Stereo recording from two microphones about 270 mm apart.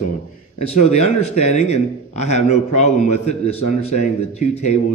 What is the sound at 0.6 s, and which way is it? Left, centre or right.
Speech, left.